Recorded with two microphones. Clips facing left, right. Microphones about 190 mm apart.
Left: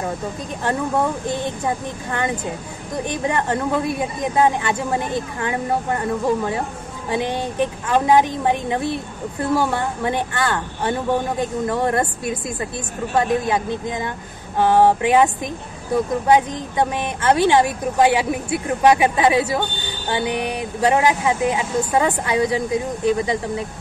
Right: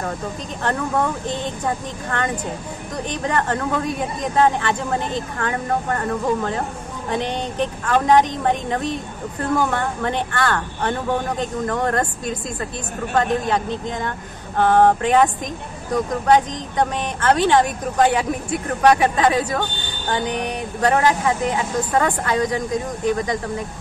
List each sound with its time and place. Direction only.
0.7 s speech: 15° left (ahead or behind)
7.8 s speech: 10° left (ahead or behind)